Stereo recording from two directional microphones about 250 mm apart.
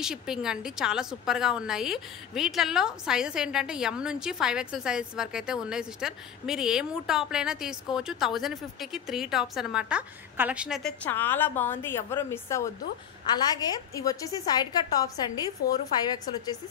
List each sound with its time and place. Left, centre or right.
0.0 s a woman's voice: centre